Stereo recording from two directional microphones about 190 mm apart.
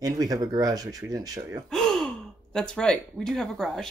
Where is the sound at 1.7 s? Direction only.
5° left (ahead or behind).